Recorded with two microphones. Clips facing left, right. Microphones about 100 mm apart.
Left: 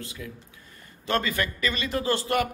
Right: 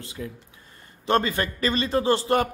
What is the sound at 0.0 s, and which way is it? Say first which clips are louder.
A man's voice: right 3 dB; 30° right (ahead or behind).